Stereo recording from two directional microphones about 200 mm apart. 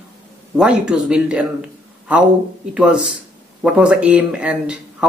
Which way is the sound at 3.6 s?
5° right (ahead or behind).